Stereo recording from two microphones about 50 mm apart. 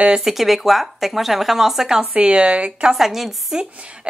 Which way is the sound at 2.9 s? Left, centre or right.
Centre.